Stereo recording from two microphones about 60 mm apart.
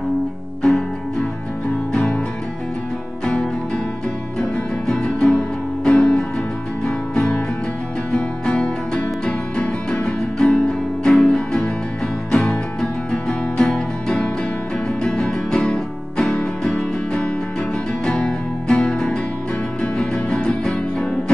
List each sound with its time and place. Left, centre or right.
0.6 s music: centre
1.9 s music: left
3.3 s music: centre